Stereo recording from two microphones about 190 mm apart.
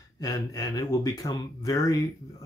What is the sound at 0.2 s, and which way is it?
Speech, 15° left (ahead or behind).